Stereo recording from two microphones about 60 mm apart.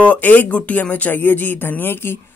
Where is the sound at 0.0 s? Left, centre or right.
Left.